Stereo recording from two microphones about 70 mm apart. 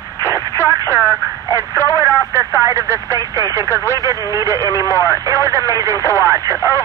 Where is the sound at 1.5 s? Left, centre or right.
Right.